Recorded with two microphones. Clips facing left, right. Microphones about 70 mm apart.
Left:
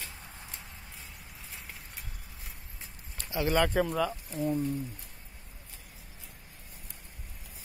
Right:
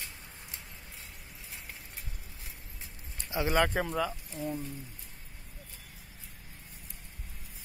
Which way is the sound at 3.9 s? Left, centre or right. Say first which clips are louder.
Left 2 dB; centre.